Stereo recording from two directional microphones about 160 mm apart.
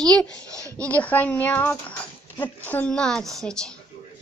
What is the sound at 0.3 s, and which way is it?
Speech, 20° right (ahead or behind).